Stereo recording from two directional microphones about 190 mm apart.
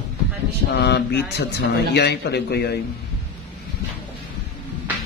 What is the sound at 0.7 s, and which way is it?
Speech, 60° left (ahead or behind).